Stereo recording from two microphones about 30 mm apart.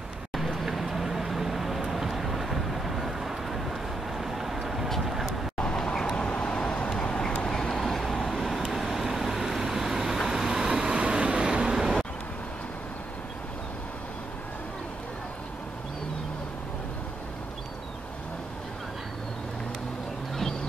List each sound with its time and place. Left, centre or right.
0.3 s vehicle: centre
0.7 s a sound: centre
1.9 s vehicle: centre
5.6 s vehicle: left
6.2 s vehicle: left; by 11.0 s centre
11.0 s vehicle: right
11.7 s vehicle: centre